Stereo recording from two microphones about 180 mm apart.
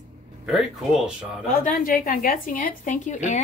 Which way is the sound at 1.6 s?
50° left (ahead or behind).